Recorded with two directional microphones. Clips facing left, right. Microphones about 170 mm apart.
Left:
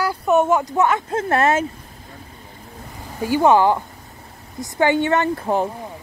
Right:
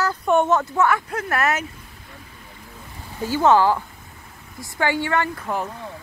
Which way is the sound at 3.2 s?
15° left (ahead or behind).